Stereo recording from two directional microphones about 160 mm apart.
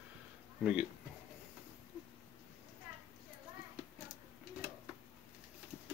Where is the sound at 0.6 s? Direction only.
5° right (ahead or behind).